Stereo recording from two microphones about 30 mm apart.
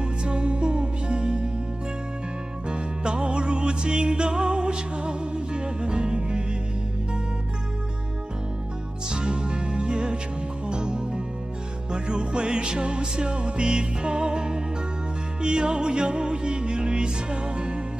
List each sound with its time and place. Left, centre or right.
0.0 s music: right
2.7 s music: right
9.1 s music: right